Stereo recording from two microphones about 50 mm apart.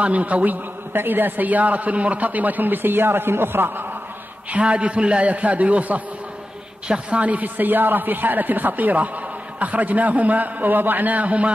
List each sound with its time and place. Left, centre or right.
0.0 s a man's voice: right
0.9 s a man's voice: right
4.5 s a man's voice: right